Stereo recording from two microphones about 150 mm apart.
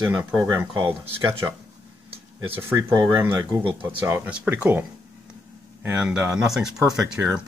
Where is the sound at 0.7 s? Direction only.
35° right (ahead or behind).